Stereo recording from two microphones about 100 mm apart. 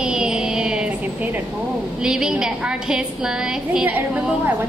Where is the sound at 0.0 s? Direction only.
10° right (ahead or behind).